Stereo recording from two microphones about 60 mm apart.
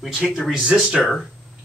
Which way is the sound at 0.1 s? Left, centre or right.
Centre.